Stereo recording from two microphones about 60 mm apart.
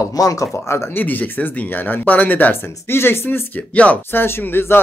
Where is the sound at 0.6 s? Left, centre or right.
Left.